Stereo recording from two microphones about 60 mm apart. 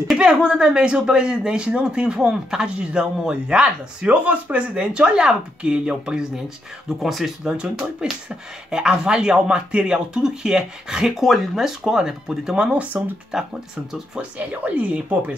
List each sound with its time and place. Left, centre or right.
0.1 s speech: centre
7.0 s speech: centre
7.4 s speech: centre
12.9 s speech: right
13.3 s speech: centre
14.6 s speech: right